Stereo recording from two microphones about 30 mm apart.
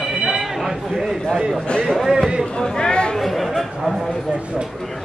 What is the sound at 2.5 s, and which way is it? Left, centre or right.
Chatter, left.